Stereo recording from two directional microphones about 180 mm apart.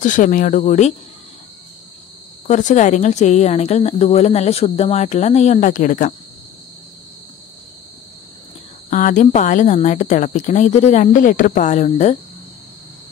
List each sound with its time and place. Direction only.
0.0 s speech: 45° left (ahead or behind)
2.4 s speech: 45° left (ahead or behind)
8.9 s speech: 45° left (ahead or behind)